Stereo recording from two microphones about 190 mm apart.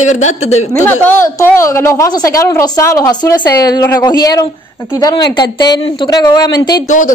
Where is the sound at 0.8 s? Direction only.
10° left (ahead or behind).